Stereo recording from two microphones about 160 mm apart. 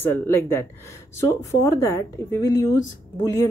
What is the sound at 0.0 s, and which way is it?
A woman's voice, 15° left (ahead or behind).